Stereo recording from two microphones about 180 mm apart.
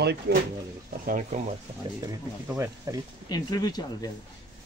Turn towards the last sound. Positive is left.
turn(degrees=20)  # may be behind; listen again after turning